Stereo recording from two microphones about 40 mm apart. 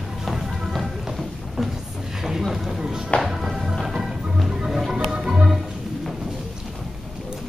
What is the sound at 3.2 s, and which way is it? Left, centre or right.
Music, centre.